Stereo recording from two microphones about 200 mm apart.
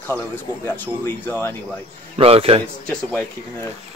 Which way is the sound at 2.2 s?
30° right (ahead or behind).